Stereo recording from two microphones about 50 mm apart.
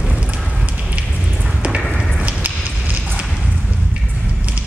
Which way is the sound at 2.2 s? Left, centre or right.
Right.